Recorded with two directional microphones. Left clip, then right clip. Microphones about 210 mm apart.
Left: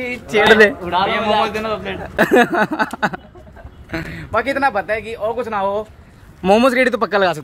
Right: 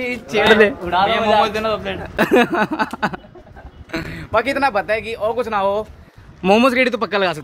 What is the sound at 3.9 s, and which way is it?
Speech, 15° right (ahead or behind).